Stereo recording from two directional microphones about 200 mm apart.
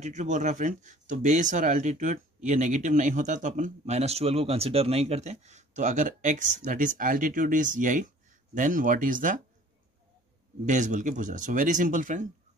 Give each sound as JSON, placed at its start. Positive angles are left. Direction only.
{"t": 0.0, "sound": "speech", "side_deg": -35}
{"t": 10.6, "sound": "speech", "side_deg": -40}